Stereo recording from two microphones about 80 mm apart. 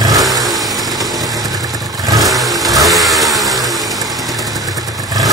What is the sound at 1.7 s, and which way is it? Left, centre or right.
Vehicle, right.